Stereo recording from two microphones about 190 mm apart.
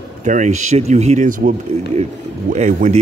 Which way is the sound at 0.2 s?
40° right (ahead or behind).